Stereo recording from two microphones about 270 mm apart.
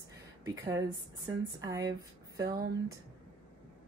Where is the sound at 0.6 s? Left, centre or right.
Centre.